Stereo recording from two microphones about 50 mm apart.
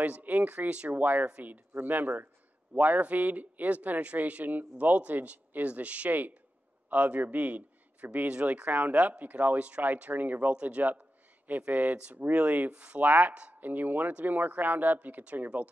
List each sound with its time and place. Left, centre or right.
0.0 s speech: right
13.3 s speech: right
13.6 s speech: right